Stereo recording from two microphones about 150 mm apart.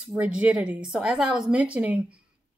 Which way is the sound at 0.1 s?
10° right (ahead or behind).